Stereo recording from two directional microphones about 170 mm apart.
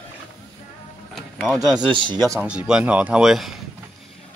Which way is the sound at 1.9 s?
25° right (ahead or behind).